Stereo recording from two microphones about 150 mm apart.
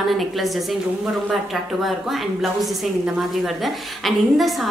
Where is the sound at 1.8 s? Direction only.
Centre (ahead or behind).